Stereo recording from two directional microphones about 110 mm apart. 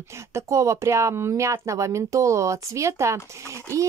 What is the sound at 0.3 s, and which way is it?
Speech, 25° right (ahead or behind).